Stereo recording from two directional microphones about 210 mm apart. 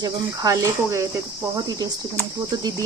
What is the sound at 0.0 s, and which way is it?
Speech, 15° right (ahead or behind).